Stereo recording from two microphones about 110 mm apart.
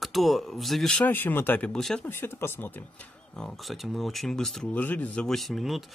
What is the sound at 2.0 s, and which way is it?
Speech, 20° left (ahead or behind).